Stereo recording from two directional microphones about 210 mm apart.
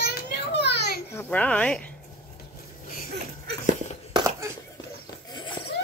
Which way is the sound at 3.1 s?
50° right (ahead or behind).